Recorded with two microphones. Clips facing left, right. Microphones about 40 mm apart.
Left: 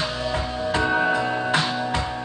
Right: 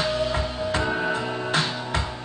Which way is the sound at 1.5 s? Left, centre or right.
Left.